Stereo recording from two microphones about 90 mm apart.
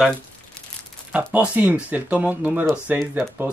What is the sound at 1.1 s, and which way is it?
Speech, 15° right (ahead or behind).